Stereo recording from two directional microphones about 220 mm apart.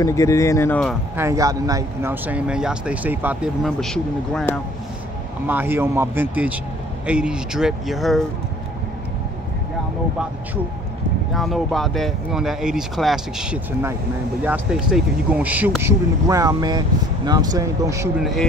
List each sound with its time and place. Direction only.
0.0 s speech: 15° left (ahead or behind)
1.1 s speech: 15° right (ahead or behind); by 4.6 s 5° left (ahead or behind)
5.5 s speech: 10° right (ahead or behind)
11.3 s speech: centre (ahead or behind)